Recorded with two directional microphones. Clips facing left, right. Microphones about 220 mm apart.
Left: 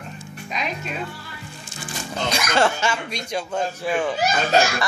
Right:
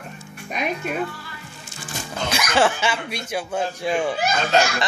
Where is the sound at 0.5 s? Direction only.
55° right (ahead or behind).